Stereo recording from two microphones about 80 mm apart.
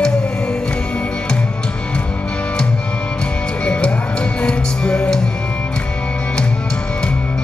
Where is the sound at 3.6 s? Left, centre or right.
Centre.